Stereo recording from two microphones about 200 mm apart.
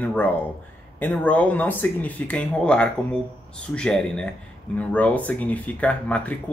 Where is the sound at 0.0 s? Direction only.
10° left (ahead or behind).